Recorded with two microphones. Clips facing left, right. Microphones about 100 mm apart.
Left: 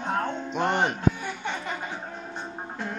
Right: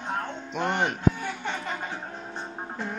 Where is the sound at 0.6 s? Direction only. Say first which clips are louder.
Left 2 dB; 20° left (ahead or behind).